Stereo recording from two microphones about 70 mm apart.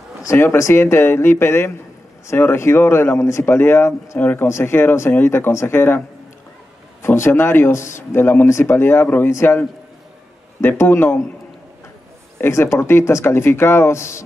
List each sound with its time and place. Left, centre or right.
0.3 s speech: left
3.4 s speech: left
10.8 s speech: left
12.4 s speech: left